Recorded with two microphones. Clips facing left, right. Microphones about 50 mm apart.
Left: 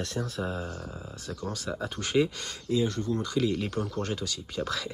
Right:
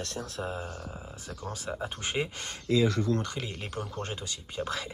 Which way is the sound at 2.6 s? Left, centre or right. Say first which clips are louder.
Right 2 dB; right.